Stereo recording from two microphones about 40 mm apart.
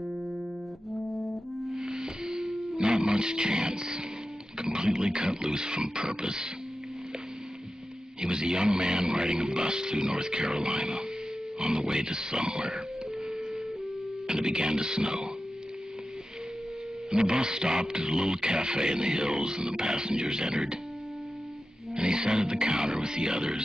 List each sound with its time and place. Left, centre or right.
1.1 s brass instrument: centre
1.8 s music: centre
2.8 s speech: centre
8.2 s speech: right
14.2 s speech: centre
17.1 s speech: centre
21.9 s speech: right